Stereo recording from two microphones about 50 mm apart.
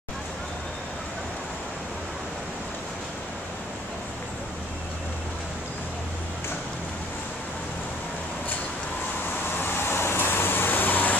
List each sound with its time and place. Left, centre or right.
9.6 s vehicle: left